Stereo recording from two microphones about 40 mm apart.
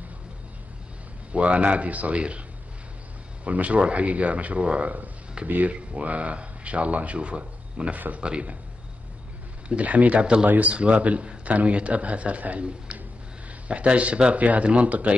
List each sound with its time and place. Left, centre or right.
1.3 s speech: right
3.4 s speech: right
7.9 s speech: right
8.2 s speech: right
9.7 s speech: right
10.4 s speech: right
10.7 s speech: right